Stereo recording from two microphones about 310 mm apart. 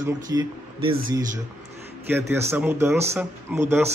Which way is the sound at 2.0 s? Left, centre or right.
Centre.